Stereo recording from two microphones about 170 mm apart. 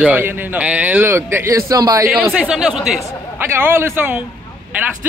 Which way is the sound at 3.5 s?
15° right (ahead or behind).